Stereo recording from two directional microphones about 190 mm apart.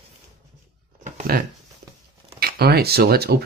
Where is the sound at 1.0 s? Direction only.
45° right (ahead or behind).